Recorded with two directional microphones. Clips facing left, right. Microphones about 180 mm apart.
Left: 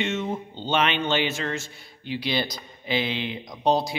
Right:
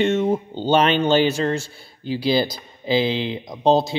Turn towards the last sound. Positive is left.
turn(degrees=-25)  # may be behind; listen again after turning